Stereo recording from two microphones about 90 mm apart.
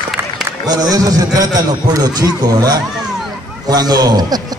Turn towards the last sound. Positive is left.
turn(degrees=-45)  # may be behind; listen again after turning